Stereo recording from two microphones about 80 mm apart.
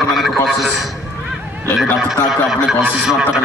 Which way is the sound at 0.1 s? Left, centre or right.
Centre.